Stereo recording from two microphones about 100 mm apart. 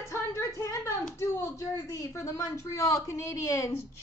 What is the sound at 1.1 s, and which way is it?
Speech, 30° left (ahead or behind).